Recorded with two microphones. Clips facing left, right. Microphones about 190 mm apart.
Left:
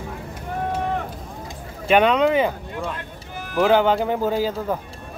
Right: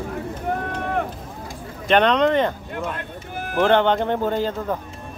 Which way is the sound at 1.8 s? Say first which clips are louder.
Even; 5° left (ahead or behind).